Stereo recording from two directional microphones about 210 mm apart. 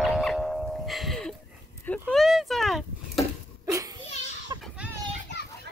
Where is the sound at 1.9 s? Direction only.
5° left (ahead or behind).